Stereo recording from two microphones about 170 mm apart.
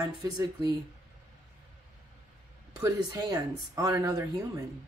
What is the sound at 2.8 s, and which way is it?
Speech, 20° right (ahead or behind).